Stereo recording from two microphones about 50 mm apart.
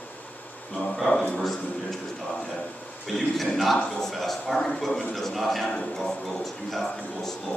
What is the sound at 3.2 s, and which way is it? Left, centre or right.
A man's voice, centre.